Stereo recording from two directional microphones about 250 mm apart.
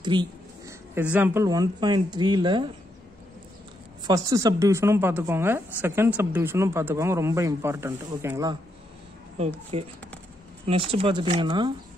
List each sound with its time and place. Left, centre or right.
0.0 s speech: centre
4.1 s a woman's voice: centre
9.7 s speech: right